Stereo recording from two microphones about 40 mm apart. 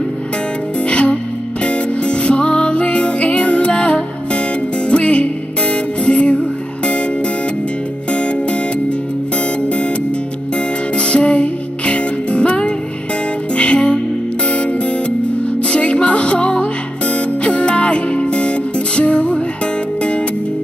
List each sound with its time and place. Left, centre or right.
0.8 s music: left
9.6 s music: left
11.0 s music: left